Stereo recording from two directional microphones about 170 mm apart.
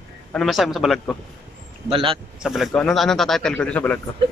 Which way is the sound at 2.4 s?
Centre (ahead or behind).